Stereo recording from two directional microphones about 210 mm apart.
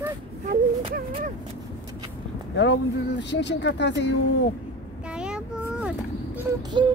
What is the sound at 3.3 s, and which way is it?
A woman's voice, 55° left (ahead or behind).